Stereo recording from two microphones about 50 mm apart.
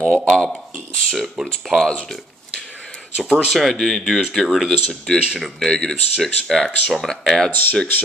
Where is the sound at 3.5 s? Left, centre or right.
Centre.